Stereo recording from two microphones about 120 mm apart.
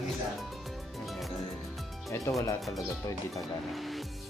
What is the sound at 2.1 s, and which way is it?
Music, 20° left (ahead or behind).